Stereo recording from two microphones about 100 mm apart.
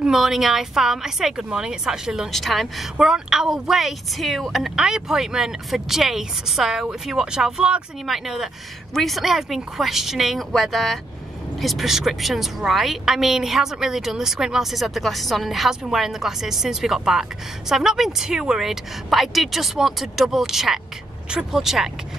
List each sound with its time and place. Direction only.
0.0 s a woman's voice: 5° right (ahead or behind)